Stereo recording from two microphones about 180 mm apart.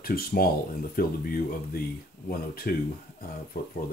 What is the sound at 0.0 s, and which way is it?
Speech, 55° left (ahead or behind).